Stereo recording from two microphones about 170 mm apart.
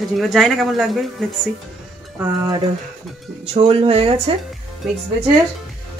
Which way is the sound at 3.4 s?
35° right (ahead or behind).